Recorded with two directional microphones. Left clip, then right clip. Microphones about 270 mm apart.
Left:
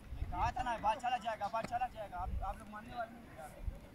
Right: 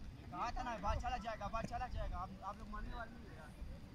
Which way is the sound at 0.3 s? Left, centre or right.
Right.